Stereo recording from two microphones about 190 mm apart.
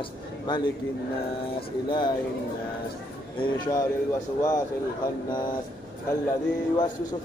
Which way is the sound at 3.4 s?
20° left (ahead or behind).